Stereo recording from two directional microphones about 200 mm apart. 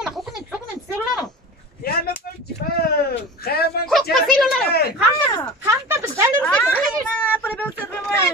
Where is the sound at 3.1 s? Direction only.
50° left (ahead or behind).